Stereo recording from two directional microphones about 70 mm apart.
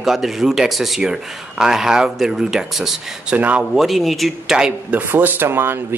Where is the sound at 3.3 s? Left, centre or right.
Right.